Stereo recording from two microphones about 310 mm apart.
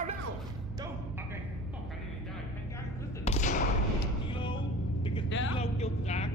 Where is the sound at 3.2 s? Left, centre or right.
Left.